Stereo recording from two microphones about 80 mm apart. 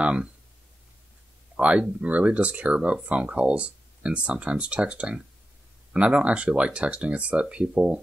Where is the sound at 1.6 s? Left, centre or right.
Centre.